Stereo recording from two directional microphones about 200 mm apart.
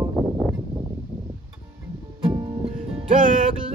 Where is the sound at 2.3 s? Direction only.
20° right (ahead or behind).